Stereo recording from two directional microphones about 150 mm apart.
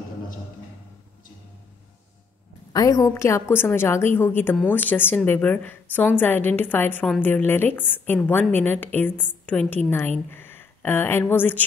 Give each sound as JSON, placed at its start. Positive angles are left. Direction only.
{"t": 2.7, "sound": "a woman's voice", "side_deg": 25}